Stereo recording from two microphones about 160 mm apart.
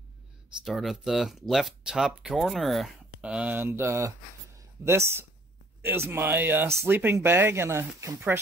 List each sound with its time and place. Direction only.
0.7 s speech: centre (ahead or behind)